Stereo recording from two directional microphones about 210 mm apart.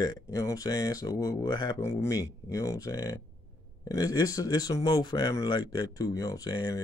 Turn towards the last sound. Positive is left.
turn(degrees=20)  # may be behind; listen again after turning